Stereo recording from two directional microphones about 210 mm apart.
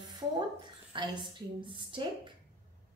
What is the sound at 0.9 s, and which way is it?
A woman's voice, 20° right (ahead or behind).